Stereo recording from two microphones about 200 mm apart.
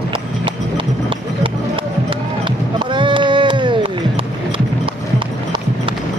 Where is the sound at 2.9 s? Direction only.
25° right (ahead or behind).